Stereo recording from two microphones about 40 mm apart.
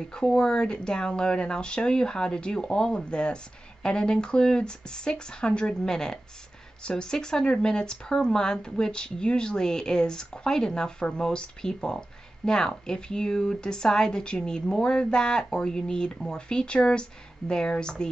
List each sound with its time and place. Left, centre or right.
0.1 s speech: centre